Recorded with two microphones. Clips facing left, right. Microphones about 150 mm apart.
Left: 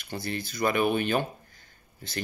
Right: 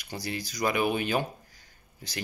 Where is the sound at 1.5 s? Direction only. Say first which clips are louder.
Left 1 dB; 55° left (ahead or behind).